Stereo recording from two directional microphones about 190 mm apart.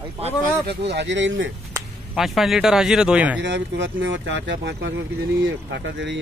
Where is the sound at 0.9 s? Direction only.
65° right (ahead or behind).